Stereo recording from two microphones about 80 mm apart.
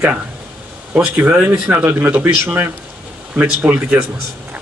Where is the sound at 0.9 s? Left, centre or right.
Centre.